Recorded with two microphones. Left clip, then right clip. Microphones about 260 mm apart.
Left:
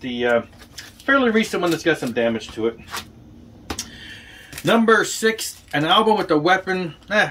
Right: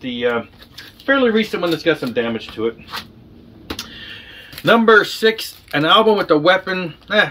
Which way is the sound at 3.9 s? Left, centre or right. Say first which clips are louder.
Right 4 dB; right.